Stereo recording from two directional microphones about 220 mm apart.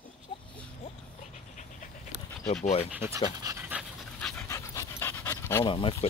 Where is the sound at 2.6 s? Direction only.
30° left (ahead or behind).